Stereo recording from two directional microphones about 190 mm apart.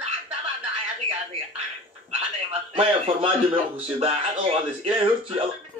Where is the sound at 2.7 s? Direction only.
30° right (ahead or behind).